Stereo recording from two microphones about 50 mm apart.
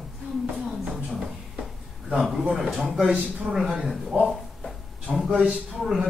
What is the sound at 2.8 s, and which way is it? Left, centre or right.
A man's voice, centre.